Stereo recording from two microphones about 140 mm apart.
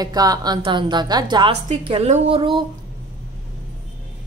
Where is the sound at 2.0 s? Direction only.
50° right (ahead or behind).